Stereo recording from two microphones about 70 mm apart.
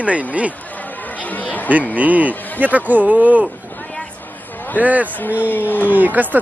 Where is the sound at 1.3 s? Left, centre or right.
Left.